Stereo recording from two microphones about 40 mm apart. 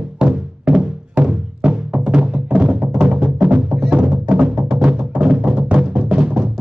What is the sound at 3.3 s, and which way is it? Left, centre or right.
Music, right.